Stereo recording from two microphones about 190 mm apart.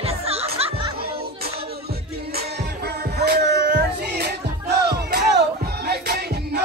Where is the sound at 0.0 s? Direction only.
30° right (ahead or behind).